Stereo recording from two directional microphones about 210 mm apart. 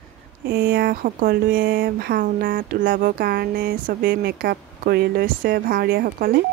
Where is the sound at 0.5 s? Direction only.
50° right (ahead or behind).